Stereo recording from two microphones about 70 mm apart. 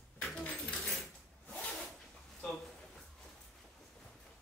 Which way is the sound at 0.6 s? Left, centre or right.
Centre.